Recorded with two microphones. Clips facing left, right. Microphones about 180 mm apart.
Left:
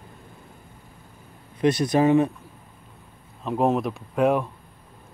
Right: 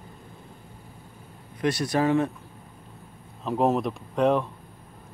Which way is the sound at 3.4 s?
Centre (ahead or behind).